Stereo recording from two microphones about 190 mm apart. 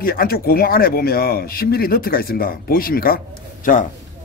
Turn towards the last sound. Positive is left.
turn(degrees=45)  # may be behind; listen again after turning